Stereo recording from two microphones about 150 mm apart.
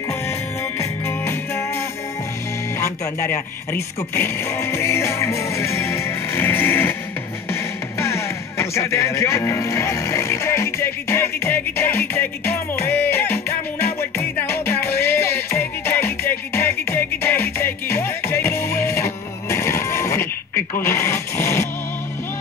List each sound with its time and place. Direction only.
0.7 s music: 15° left (ahead or behind)
2.8 s speech: 15° left (ahead or behind)
8.0 s music: 20° left (ahead or behind)